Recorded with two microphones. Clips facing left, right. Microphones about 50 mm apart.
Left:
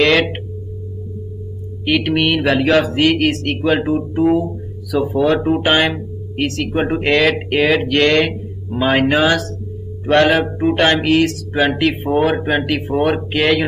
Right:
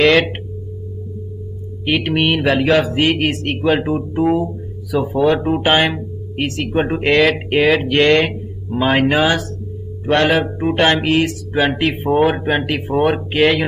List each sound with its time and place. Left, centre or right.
0.0 s speech: centre
1.9 s speech: centre
2.5 s speech: centre
3.0 s speech: centre
7.1 s speech: centre
11.5 s speech: centre